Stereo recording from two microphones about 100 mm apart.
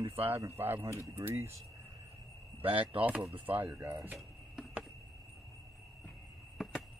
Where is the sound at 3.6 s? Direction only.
25° right (ahead or behind).